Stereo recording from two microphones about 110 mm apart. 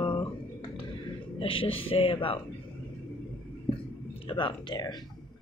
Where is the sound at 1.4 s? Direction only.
55° left (ahead or behind).